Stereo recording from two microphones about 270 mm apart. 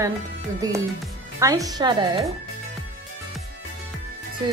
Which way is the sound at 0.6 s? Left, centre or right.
Centre.